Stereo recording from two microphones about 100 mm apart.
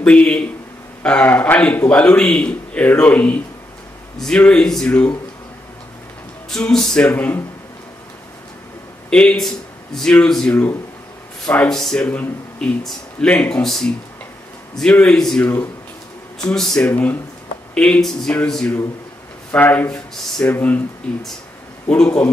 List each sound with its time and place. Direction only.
0.0 s speech: 10° left (ahead or behind)
6.5 s speech: 5° left (ahead or behind)
7.1 s speech: 20° left (ahead or behind)
9.1 s speech: 10° left (ahead or behind)
16.9 s speech: 20° left (ahead or behind)